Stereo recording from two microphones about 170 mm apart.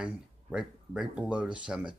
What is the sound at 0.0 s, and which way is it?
Speech, 5° right (ahead or behind).